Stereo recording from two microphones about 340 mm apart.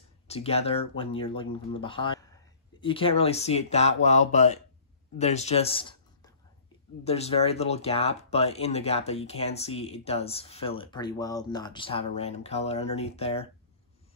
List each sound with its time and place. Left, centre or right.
0.3 s speech: centre